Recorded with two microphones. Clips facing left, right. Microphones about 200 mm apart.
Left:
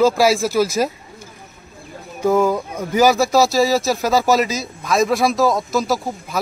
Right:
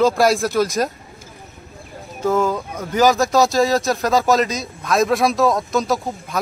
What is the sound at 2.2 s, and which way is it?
Speech, 10° left (ahead or behind).